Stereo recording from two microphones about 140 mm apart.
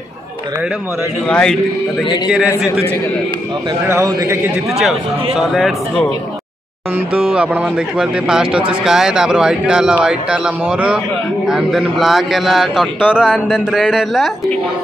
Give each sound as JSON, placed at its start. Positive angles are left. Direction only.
{"t": 1.3, "sound": "a man's voice", "side_deg": 5}
{"t": 4.0, "sound": "a man's voice", "side_deg": -20}
{"t": 5.4, "sound": "speech", "side_deg": 0}
{"t": 7.2, "sound": "speech", "side_deg": -10}